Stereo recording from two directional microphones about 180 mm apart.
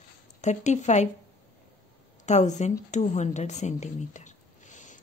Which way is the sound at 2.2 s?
40° left (ahead or behind).